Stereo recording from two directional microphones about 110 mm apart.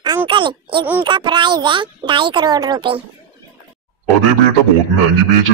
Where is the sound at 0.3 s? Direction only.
50° right (ahead or behind).